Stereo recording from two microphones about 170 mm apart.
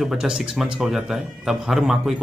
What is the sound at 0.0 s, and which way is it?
Speech, 5° right (ahead or behind).